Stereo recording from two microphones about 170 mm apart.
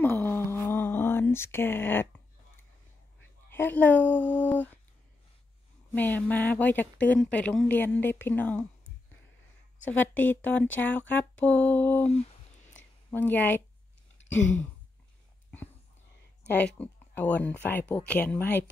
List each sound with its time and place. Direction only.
0.0 s a sound: 10° left (ahead or behind)
3.4 s speech: 10° left (ahead or behind)
5.9 s speech: 10° left (ahead or behind)
9.8 s speech: 10° left (ahead or behind)
12.1 s a sound: 40° left (ahead or behind)
13.1 s speech: 10° left (ahead or behind)
16.5 s speech: 10° left (ahead or behind)